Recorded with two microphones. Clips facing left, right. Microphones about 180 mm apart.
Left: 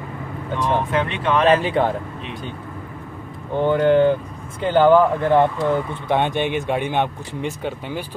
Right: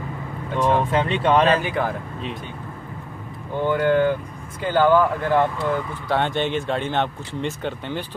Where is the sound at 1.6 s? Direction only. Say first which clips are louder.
Left 5 dB; 30° left (ahead or behind).